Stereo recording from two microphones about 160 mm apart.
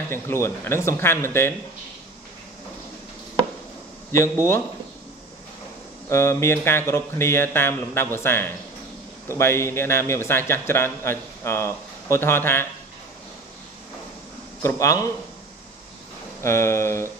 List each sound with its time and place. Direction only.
0.1 s a man's voice: 15° left (ahead or behind)
4.1 s a man's voice: 15° left (ahead or behind)
6.0 s a man's voice: 15° left (ahead or behind)
14.6 s a man's voice: 20° left (ahead or behind)
16.4 s a man's voice: 15° left (ahead or behind)